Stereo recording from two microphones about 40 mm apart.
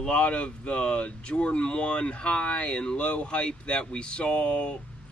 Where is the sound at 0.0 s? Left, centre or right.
Left.